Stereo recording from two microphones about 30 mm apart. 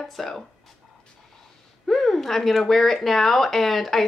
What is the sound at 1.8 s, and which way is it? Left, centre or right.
A woman's voice, centre.